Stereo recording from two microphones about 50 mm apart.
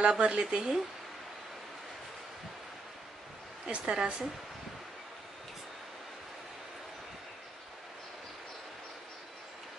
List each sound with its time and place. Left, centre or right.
0.0 s speech: right
3.6 s speech: centre